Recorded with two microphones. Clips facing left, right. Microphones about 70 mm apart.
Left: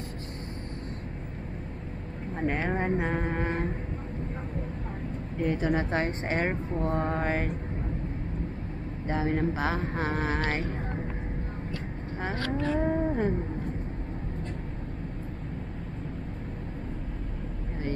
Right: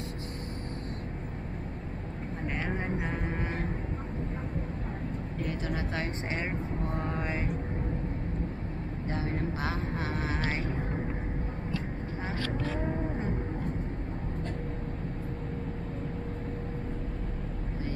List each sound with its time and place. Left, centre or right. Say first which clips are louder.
2.4 s a sound: left 6 dB; left
5.6 s speech: left 7 dB; left
9.0 s speech: left 6 dB; left
12.8 s vehicle: left 6 dB; left